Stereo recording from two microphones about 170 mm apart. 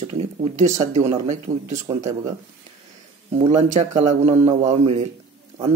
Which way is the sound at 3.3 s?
40° right (ahead or behind).